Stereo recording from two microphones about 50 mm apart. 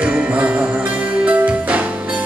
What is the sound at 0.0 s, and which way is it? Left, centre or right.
Music, right.